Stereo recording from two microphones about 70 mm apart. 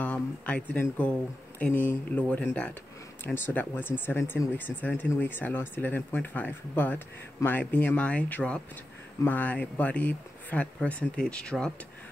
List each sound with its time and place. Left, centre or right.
0.0 s speech: centre
1.6 s speech: left
3.3 s speech: left; by 11.5 s centre